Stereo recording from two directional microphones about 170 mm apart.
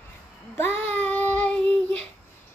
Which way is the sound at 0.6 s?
10° left (ahead or behind).